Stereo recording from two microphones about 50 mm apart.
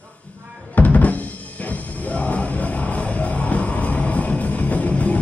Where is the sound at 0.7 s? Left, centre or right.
Left.